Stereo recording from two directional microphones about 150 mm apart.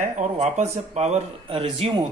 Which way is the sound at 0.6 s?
50° right (ahead or behind).